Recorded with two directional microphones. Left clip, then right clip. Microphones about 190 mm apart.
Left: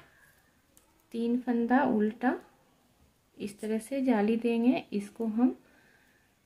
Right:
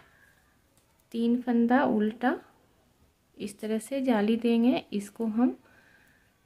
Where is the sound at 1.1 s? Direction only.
20° right (ahead or behind).